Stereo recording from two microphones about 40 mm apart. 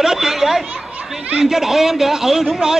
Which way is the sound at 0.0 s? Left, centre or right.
Centre.